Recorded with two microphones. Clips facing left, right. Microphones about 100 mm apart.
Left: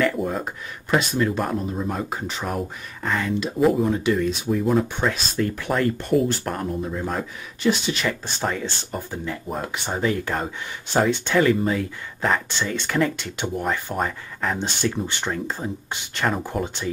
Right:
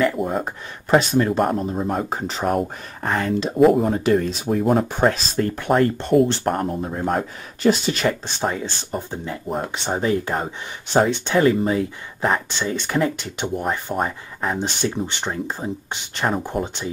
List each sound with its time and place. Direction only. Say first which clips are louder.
0.2 s speech: right 1 dB; centre (ahead or behind)
0.8 s speech: right 4 dB; 35° right (ahead or behind)
4.5 s speech: right 4 dB; 50° right (ahead or behind); by 6.6 s 30° right (ahead or behind)
6.6 s speech: right 3 dB; 45° right (ahead or behind)
8.1 s speech: right 3 dB; 20° right (ahead or behind)